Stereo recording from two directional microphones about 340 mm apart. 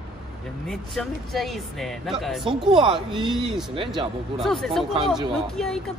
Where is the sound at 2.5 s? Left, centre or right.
Centre.